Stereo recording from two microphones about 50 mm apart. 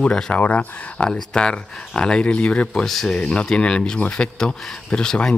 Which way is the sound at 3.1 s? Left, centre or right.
Left.